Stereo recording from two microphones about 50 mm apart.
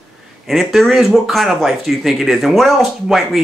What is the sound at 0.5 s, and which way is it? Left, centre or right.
Speech, centre.